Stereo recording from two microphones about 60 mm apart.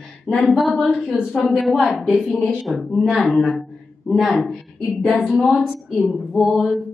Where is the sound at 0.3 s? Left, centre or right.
Centre.